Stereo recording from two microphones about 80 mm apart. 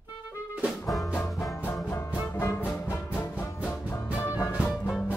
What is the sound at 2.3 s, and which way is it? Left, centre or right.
Music, left.